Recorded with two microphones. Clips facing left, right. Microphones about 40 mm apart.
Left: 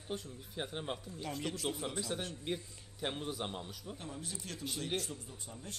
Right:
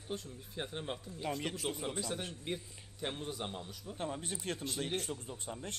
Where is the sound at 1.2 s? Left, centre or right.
Centre.